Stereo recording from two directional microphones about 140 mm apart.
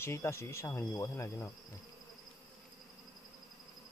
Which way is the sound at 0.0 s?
20° left (ahead or behind).